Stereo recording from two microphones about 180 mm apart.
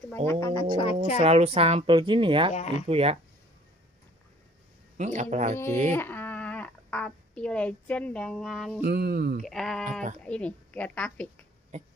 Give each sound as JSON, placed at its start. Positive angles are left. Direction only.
{"t": 0.3, "sound": "a woman's voice", "side_deg": 20}
{"t": 0.7, "sound": "a woman's voice", "side_deg": 35}
{"t": 1.1, "sound": "a woman's voice", "side_deg": -35}
{"t": 2.5, "sound": "a woman's voice", "side_deg": 40}
{"t": 2.9, "sound": "a man's voice", "side_deg": -35}
{"t": 4.9, "sound": "a man's voice", "side_deg": -45}
{"t": 5.9, "sound": "speech", "side_deg": 10}
{"t": 8.8, "sound": "music", "side_deg": -60}
{"t": 9.4, "sound": "bleat", "side_deg": 0}
{"t": 10.2, "sound": "a woman's voice", "side_deg": 5}